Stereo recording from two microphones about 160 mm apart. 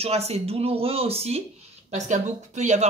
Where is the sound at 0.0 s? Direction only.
40° right (ahead or behind).